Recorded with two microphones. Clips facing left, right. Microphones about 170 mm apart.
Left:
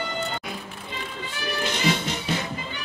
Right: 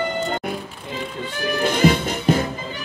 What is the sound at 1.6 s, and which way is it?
Music, 50° right (ahead or behind).